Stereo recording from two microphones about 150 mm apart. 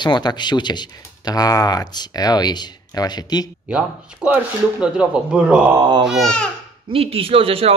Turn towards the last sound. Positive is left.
turn(degrees=-40)  # may be behind; listen again after turning